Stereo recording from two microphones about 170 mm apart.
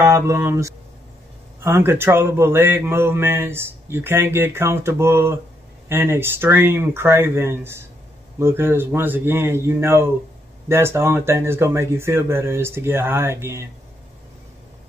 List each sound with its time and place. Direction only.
0.0 s a man's voice: 15° right (ahead or behind)